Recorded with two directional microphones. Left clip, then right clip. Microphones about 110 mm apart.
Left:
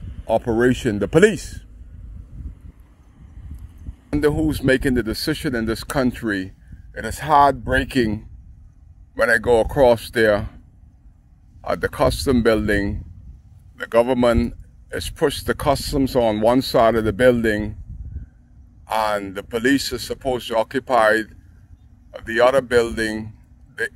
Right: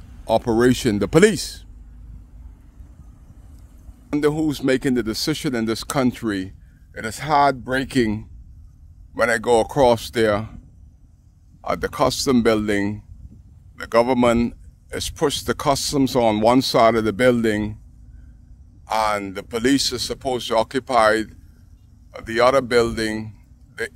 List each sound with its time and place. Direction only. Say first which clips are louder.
0.2 s speech: right 1 dB; 35° right (ahead or behind)
4.1 s speech: left 1 dB; 20° right (ahead or behind)
9.1 s speech: left 1 dB; 30° right (ahead or behind)
11.6 s speech: left 1 dB; 20° right (ahead or behind); by 14.6 s 40° right (ahead or behind)
14.9 s speech: left 1 dB; 25° right (ahead or behind)
16.0 s speech: right 1 dB; 45° right (ahead or behind)
18.9 s speech: even; 30° right (ahead or behind)